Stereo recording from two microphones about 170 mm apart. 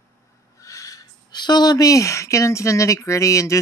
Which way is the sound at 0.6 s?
20° left (ahead or behind).